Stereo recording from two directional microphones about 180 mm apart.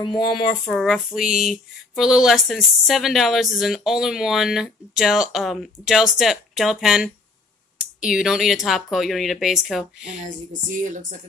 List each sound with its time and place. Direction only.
0.0 s speech: 25° left (ahead or behind)
0.7 s speech: centre (ahead or behind)
8.1 s speech: 5° right (ahead or behind)
10.9 s speech: 45° right (ahead or behind)